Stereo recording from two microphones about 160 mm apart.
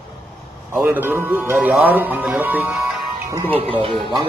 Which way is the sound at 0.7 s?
10° right (ahead or behind).